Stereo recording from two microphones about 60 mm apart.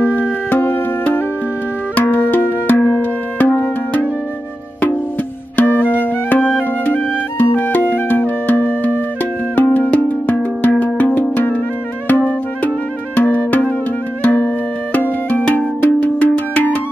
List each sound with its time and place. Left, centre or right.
0.1 s music: left
2.0 s music: left
5.9 s music: left